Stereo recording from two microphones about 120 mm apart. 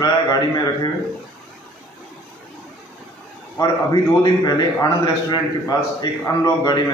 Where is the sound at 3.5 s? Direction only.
30° left (ahead or behind).